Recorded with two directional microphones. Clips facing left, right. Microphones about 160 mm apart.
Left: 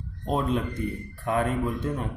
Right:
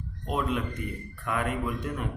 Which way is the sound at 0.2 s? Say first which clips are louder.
Left 3 dB; 30° left (ahead or behind).